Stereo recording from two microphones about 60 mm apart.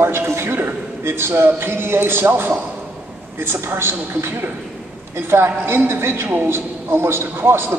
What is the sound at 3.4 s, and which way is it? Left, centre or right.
A man's voice, right.